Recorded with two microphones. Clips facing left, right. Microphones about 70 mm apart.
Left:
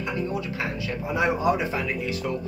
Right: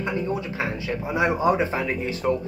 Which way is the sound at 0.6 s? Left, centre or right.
Right.